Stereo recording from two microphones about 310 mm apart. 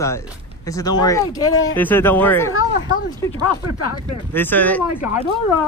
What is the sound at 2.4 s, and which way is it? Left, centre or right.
Speech, left.